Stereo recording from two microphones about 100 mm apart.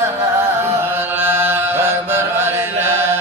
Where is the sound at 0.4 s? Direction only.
25° right (ahead or behind).